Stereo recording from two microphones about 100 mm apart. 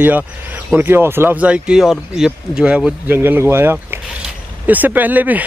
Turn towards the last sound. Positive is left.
turn(degrees=-15)  # may be behind; listen again after turning